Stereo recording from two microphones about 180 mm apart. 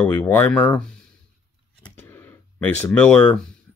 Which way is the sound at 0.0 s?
10° left (ahead or behind).